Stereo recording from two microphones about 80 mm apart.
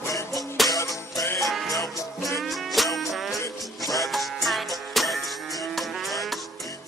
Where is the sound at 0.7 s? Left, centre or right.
Left.